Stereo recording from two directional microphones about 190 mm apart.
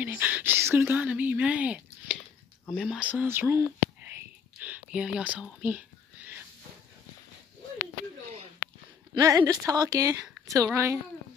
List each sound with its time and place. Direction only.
0.0 s a woman's voice: 10° right (ahead or behind)
4.6 s whispering: 5° right (ahead or behind)
9.1 s a woman's voice: 15° right (ahead or behind)